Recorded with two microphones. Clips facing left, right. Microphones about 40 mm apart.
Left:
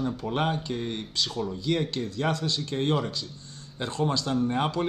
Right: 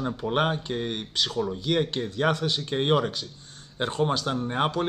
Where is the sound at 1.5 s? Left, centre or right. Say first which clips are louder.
Even; right.